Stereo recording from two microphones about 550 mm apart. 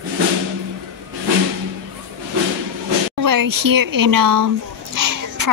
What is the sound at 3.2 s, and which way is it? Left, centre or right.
A child's voice, right.